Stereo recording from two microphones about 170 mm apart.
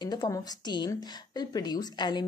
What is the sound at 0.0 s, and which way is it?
Speech, 25° left (ahead or behind).